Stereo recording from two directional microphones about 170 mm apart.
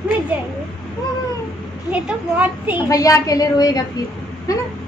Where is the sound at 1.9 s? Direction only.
10° right (ahead or behind).